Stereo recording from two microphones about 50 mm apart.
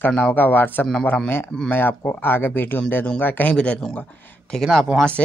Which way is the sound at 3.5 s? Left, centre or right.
Left.